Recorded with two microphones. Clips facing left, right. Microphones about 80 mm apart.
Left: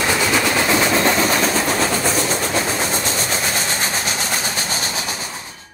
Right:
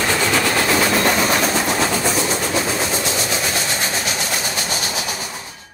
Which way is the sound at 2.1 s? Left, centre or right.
Left.